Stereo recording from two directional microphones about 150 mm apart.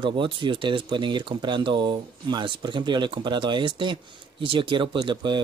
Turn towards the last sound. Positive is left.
turn(degrees=-35)  # may be behind; listen again after turning